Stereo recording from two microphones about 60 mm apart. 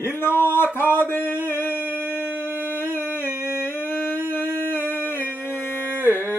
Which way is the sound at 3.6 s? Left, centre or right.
Left.